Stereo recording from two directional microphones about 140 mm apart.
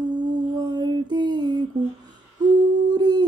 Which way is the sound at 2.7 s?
30° right (ahead or behind).